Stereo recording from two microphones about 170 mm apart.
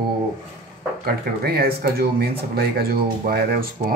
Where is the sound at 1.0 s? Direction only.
65° right (ahead or behind).